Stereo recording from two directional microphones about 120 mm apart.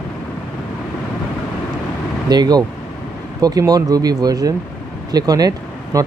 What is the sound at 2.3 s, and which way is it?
Speech, 35° right (ahead or behind).